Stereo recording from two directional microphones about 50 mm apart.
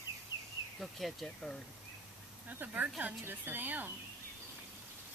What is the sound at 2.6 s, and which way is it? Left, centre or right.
A woman's voice, right.